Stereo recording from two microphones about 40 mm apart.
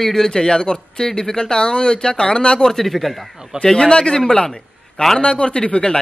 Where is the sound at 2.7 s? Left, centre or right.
Centre.